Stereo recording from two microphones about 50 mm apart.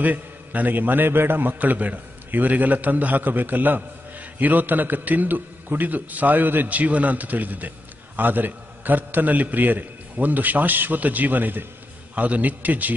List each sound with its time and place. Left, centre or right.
0.0 s a man's voice: right